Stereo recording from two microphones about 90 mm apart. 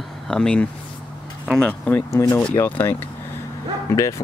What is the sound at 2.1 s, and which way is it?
Speech, 35° left (ahead or behind).